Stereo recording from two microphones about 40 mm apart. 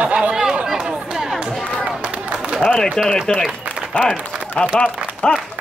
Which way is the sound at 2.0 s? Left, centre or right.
Right.